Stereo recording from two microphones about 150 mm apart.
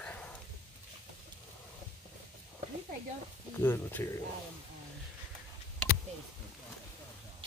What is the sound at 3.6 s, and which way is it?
Speech, 15° left (ahead or behind).